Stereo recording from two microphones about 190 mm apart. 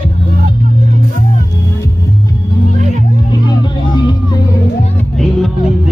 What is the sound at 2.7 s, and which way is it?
Music, 40° right (ahead or behind).